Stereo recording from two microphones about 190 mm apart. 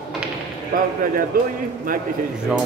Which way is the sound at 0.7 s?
50° right (ahead or behind).